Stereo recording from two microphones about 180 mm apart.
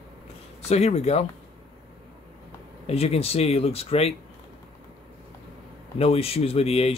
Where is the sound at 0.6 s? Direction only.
35° left (ahead or behind).